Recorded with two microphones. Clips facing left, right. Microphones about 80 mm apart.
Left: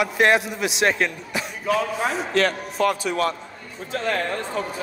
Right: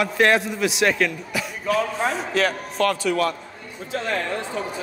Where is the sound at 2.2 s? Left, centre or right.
Centre.